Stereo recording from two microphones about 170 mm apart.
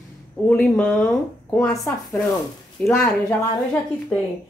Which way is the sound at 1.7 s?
20° left (ahead or behind).